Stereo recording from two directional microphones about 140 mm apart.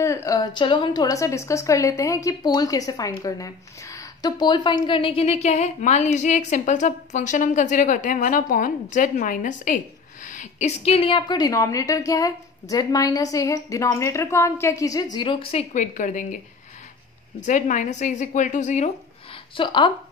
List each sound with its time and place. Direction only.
0.0 s a woman's voice: 20° left (ahead or behind)
15.1 s a woman's voice: 35° left (ahead or behind)
15.7 s a woman's voice: 60° left (ahead or behind)
17.4 s a woman's voice: 60° left (ahead or behind)
19.5 s a woman's voice: 35° left (ahead or behind)